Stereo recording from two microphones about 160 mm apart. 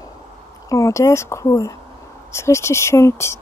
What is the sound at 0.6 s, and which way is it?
Speech, 20° left (ahead or behind).